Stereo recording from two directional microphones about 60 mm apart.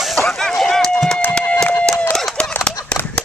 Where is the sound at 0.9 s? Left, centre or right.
Centre.